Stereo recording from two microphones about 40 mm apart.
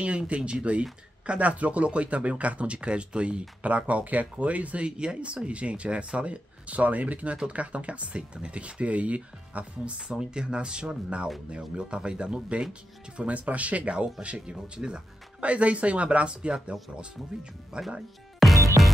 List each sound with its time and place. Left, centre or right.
0.2 s speech: right
4.8 s speech: right
10.0 s speech: right
13.3 s speech: right
14.5 s speech: centre
15.4 s speech: right
17.7 s speech: right
18.4 s music: centre